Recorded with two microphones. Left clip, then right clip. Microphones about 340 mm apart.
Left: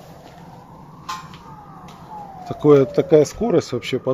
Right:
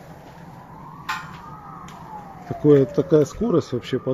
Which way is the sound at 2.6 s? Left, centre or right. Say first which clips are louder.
Left 3 dB; centre.